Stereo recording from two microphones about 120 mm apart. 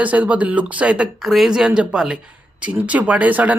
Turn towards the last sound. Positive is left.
turn(degrees=-15)  # may be behind; listen again after turning